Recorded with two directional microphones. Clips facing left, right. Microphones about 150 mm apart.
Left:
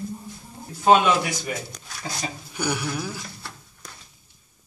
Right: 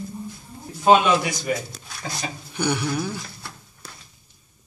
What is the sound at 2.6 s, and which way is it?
Speech, 5° left (ahead or behind).